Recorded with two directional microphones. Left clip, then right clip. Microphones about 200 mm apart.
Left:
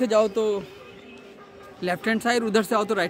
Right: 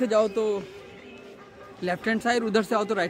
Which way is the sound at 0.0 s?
15° left (ahead or behind).